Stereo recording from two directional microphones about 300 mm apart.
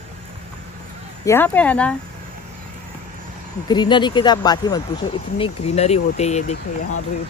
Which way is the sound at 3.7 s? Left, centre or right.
Centre.